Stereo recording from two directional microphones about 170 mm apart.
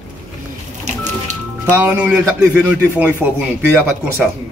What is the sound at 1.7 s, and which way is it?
Speech, 10° right (ahead or behind).